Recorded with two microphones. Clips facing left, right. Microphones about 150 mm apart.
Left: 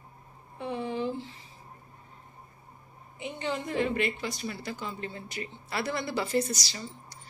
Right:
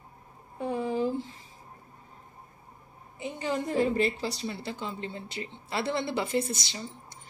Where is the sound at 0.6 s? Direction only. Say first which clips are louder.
Right 3 dB; 40° right (ahead or behind).